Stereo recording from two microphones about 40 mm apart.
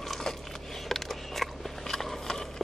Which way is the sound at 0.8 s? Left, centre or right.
Centre.